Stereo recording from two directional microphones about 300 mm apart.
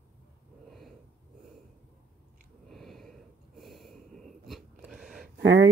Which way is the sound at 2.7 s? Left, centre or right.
Centre.